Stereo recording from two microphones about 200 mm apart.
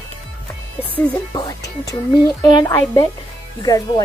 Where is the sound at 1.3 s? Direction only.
15° left (ahead or behind).